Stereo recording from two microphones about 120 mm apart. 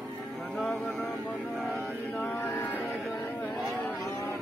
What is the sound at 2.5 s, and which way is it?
Speech, 20° left (ahead or behind).